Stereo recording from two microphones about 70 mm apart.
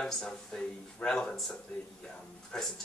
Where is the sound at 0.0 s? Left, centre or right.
Centre.